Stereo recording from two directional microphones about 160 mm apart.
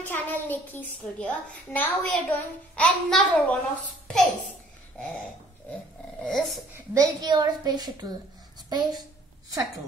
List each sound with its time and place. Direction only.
0.0 s a child's voice: 10° left (ahead or behind)
6.2 s speech: 5° left (ahead or behind)
6.7 s a woman's voice: 20° right (ahead or behind)